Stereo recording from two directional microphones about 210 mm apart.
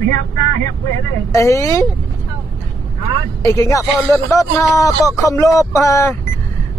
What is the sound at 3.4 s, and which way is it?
Speech, 15° left (ahead or behind).